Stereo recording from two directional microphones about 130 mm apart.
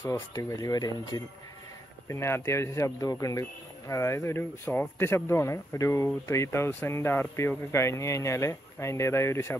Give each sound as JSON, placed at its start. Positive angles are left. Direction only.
{"t": 0.0, "sound": "speech", "side_deg": 20}